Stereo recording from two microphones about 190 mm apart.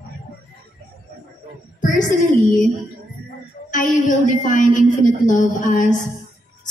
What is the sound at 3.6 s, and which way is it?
A woman's voice, 45° left (ahead or behind).